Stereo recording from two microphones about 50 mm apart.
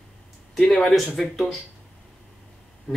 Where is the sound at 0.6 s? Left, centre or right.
Centre.